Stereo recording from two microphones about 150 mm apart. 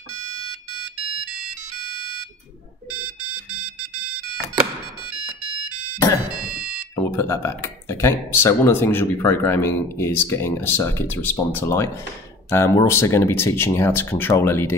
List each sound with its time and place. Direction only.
7.0 s speech: 20° left (ahead or behind)